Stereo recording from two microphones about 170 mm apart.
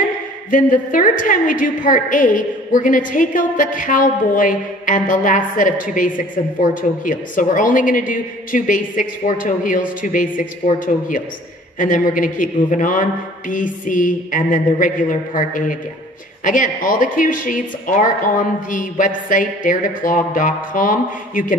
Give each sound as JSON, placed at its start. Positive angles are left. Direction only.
{"t": 0.5, "sound": "a woman's voice", "side_deg": 50}